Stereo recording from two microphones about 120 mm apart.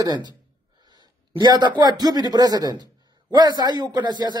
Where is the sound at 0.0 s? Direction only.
35° right (ahead or behind).